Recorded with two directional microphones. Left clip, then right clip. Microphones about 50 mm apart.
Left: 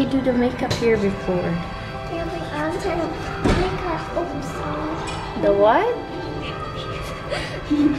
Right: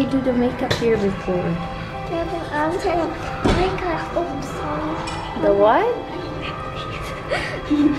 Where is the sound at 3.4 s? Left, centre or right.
Right.